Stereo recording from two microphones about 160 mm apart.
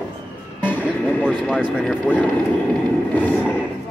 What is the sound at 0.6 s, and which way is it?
Vehicle, 10° left (ahead or behind).